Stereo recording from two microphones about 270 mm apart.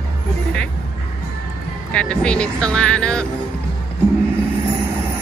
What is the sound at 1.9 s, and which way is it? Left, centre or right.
Speech, centre.